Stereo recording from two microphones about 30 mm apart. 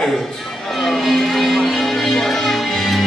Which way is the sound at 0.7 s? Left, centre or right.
Centre.